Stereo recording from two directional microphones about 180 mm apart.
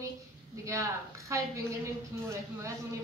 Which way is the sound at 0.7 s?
15° right (ahead or behind).